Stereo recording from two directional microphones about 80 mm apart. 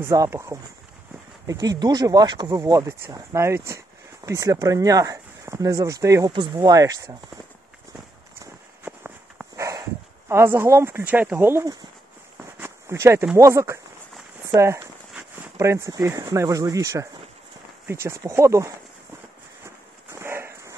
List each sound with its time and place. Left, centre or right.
0.3 s speech: right
1.5 s speech: right
2.6 s speech: right
6.3 s speech: right
6.7 s speech: right
8.8 s a sound: right
9.6 s speech: right
12.5 s a sound: right
13.4 s speech: right
19.6 s a sound: right